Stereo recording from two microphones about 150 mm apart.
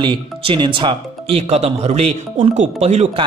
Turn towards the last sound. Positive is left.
turn(degrees=-45)  # may be behind; listen again after turning